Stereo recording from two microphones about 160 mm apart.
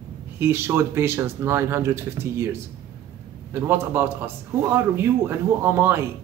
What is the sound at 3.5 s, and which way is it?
Speech, 15° right (ahead or behind).